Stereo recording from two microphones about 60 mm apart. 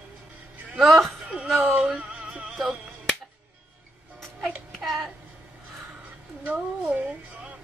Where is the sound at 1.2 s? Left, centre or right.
Centre.